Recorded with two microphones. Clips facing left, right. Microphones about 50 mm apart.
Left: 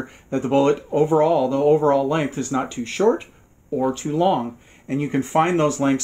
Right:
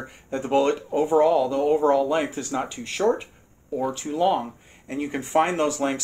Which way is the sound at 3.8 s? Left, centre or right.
Centre.